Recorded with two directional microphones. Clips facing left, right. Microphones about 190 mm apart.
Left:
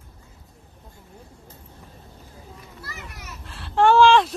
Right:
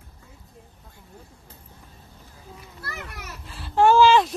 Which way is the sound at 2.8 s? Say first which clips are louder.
Right 4 dB; 60° right (ahead or behind).